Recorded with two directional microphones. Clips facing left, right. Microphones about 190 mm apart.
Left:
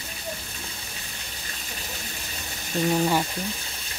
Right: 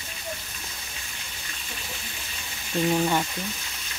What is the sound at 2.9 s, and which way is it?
Speech, 5° left (ahead or behind).